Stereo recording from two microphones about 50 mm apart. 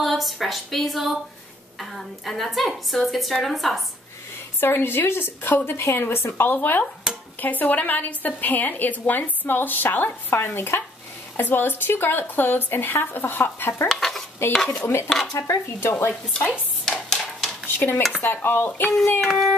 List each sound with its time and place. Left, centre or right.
0.0 s a woman's voice: centre
4.6 s a woman's voice: left
10.3 s speech: left
11.3 s speech: left
13.8 s a woman's voice: centre
15.3 s speech: left
15.8 s speech: left
16.8 s a sound: centre
17.7 s speech: left
19.2 s a woman's voice: centre